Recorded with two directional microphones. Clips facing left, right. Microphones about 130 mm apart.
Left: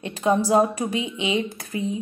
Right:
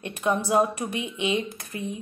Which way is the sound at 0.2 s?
30° left (ahead or behind).